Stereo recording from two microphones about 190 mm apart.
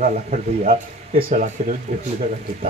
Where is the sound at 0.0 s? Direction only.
45° right (ahead or behind).